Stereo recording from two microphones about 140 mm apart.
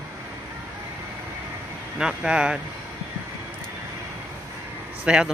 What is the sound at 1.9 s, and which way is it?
Speech, 5° right (ahead or behind).